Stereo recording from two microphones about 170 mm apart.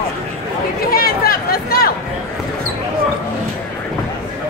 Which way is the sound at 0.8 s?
60° left (ahead or behind).